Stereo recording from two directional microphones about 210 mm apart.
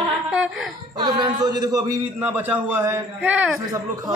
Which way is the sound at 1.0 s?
20° right (ahead or behind).